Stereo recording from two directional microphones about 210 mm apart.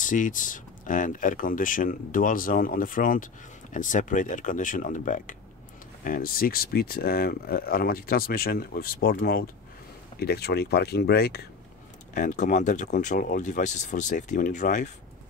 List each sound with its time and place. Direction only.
0.0 s speech: 40° left (ahead or behind)
12.1 s speech: 35° left (ahead or behind)